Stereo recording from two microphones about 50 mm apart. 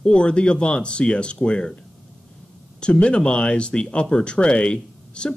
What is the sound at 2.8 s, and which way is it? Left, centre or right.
Speech, centre.